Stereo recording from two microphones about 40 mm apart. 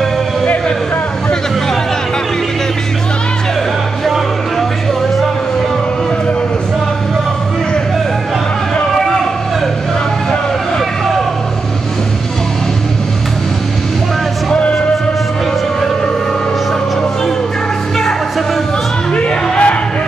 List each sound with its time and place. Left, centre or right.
19.1 s music: left